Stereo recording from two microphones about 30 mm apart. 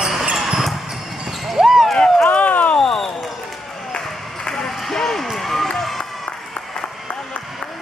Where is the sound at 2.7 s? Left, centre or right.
Centre.